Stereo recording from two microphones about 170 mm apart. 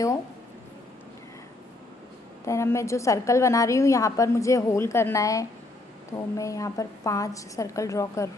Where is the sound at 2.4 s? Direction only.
15° left (ahead or behind).